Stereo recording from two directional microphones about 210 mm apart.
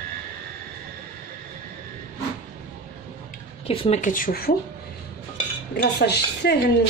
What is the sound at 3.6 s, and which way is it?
Speech, 25° left (ahead or behind).